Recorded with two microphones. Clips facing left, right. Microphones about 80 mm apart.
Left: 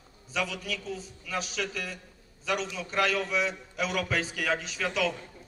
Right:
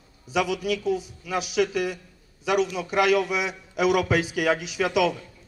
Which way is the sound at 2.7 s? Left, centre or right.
Right.